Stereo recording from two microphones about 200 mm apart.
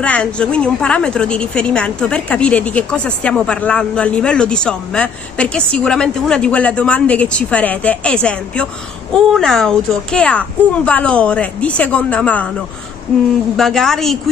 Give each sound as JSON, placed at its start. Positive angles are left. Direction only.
{"t": 0.0, "sound": "a woman's voice", "side_deg": 5}
{"t": 13.6, "sound": "a woman's voice", "side_deg": 5}